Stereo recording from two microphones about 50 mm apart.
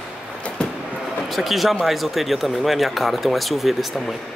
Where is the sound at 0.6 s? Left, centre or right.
Centre.